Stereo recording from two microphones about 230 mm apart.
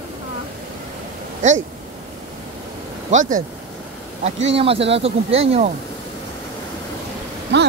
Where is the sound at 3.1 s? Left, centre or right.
Right.